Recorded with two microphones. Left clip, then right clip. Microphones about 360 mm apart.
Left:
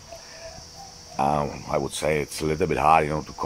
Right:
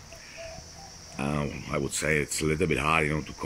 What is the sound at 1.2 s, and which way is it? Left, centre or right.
Cricket, centre.